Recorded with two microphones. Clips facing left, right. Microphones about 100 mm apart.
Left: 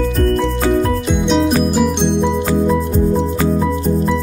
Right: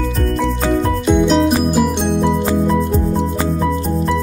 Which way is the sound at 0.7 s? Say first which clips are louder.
Right 2 dB; centre (ahead or behind).